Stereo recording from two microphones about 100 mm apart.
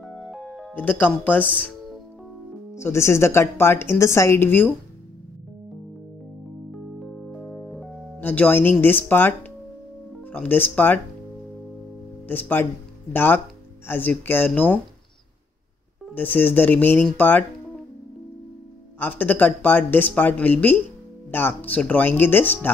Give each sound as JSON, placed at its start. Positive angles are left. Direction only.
{"t": 0.0, "sound": "music", "side_deg": 0}
{"t": 0.7, "sound": "speech", "side_deg": 15}
{"t": 2.7, "sound": "a woman's voice", "side_deg": 30}
{"t": 7.2, "sound": "music", "side_deg": 5}
{"t": 8.2, "sound": "a woman's voice", "side_deg": 20}
{"t": 10.3, "sound": "a woman's voice", "side_deg": 20}
{"t": 12.3, "sound": "a woman's voice", "side_deg": 20}
{"t": 16.2, "sound": "a woman's voice", "side_deg": 20}
{"t": 18.9, "sound": "a woman's voice", "side_deg": 20}